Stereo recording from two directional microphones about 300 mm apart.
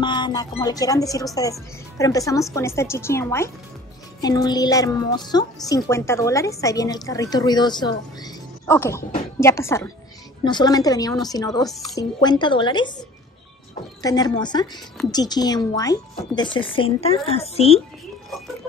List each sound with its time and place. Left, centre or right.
0.0 s a woman's voice: centre
14.0 s a woman's voice: centre